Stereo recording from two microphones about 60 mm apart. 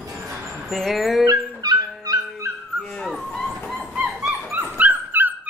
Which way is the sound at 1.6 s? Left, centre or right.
Right.